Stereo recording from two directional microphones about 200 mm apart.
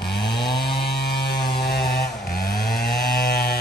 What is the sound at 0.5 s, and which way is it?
Chainsaw, 55° left (ahead or behind).